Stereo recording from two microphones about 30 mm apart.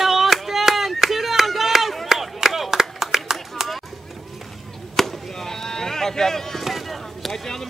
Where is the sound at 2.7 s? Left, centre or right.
Centre.